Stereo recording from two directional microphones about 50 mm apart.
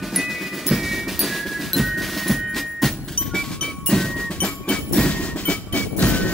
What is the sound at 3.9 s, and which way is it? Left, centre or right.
Music, centre.